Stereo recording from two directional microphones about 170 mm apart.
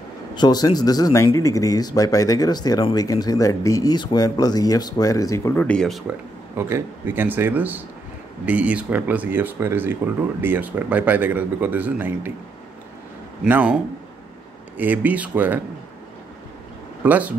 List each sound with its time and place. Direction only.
0.3 s speech: 25° left (ahead or behind)
5.5 s speech: 5° left (ahead or behind)
6.5 s a man's voice: 15° right (ahead or behind)
13.4 s a man's voice: 10° right (ahead or behind)
14.8 s a man's voice: 10° right (ahead or behind)
17.0 s speech: 10° right (ahead or behind)